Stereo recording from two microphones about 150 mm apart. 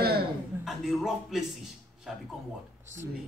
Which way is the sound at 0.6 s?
Centre (ahead or behind).